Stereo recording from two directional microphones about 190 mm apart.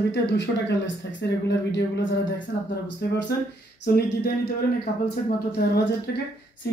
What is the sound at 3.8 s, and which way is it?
Speech, 55° left (ahead or behind).